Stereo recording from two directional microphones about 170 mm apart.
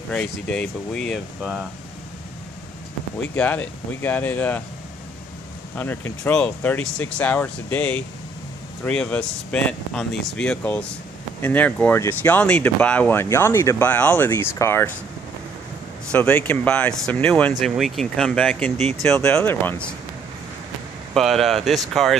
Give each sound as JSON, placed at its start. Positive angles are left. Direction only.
{"t": 0.1, "sound": "speech", "side_deg": 5}
{"t": 3.3, "sound": "speech", "side_deg": 10}
{"t": 5.8, "sound": "speech", "side_deg": 10}
{"t": 16.1, "sound": "speech", "side_deg": 10}
{"t": 21.1, "sound": "speech", "side_deg": 0}